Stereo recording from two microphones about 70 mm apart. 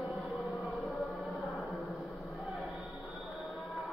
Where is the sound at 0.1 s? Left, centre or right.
Centre.